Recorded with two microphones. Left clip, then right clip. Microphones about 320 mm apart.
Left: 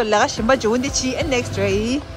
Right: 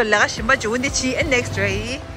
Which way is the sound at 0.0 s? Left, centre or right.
Centre.